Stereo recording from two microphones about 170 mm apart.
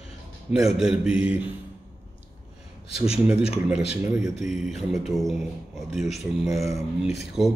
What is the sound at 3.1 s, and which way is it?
Speech, 5° right (ahead or behind).